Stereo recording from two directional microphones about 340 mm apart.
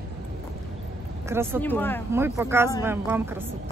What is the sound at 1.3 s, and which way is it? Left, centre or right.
Speech, centre.